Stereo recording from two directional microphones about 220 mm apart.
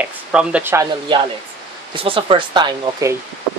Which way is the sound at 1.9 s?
25° right (ahead or behind).